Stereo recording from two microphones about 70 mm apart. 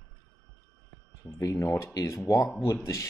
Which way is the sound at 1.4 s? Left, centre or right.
Left.